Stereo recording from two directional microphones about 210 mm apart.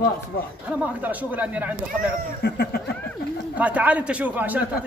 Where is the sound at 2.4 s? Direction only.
50° left (ahead or behind).